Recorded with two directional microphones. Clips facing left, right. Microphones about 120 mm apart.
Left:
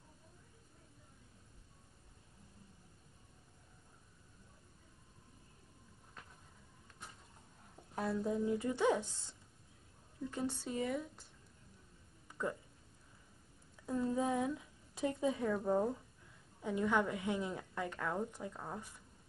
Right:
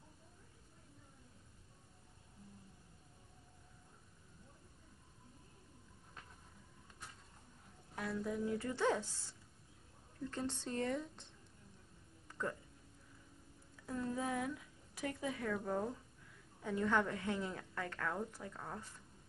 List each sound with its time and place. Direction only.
7.9 s speech: 30° left (ahead or behind)
10.3 s a woman's voice: 10° left (ahead or behind)
12.3 s a sound: 15° left (ahead or behind)
13.8 s a woman's voice: 20° left (ahead or behind)